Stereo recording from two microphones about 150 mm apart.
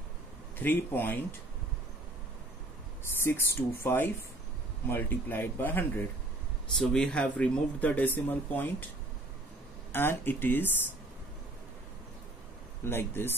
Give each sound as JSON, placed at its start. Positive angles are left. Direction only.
{"t": 0.6, "sound": "speech", "side_deg": 15}
{"t": 3.0, "sound": "a sound", "side_deg": 15}
{"t": 3.5, "sound": "speech", "side_deg": 15}
{"t": 9.9, "sound": "speech", "side_deg": 15}
{"t": 12.8, "sound": "speech", "side_deg": 15}